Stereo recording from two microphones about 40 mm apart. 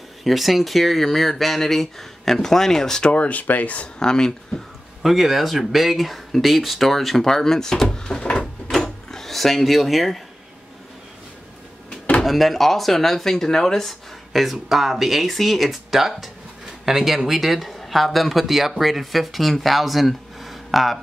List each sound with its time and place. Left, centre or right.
0.2 s speech: centre
3.0 s speech: left
4.0 s speech: centre
5.0 s speech: centre; by 8.7 s left
8.7 s drawer open or close: centre
12.3 s speech: centre
14.3 s speech: centre